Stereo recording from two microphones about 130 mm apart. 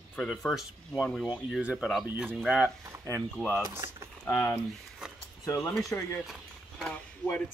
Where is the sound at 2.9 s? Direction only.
20° right (ahead or behind).